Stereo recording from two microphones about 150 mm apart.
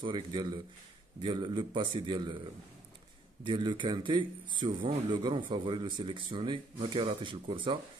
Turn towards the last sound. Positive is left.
turn(degrees=-35)  # may be behind; listen again after turning